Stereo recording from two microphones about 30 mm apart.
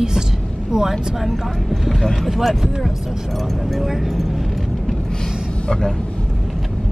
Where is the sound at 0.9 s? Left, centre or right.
Centre.